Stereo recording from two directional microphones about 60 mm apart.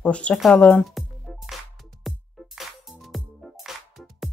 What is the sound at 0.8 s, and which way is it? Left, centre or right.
Music, centre.